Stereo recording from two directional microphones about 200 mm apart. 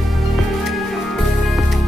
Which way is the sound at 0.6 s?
Centre (ahead or behind).